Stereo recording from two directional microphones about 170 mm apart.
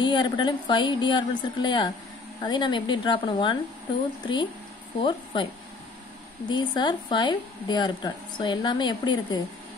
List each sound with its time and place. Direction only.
0.0 s speech: 25° left (ahead or behind)
5.0 s speech: 30° left (ahead or behind)
6.5 s speech: 25° left (ahead or behind)